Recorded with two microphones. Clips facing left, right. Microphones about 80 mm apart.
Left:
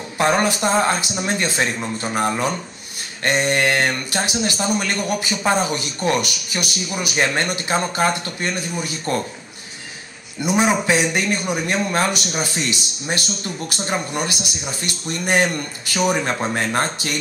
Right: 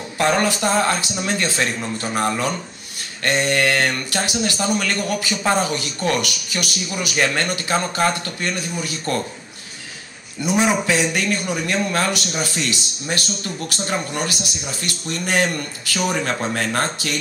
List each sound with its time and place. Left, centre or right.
0.2 s speech: left
10.4 s speech: left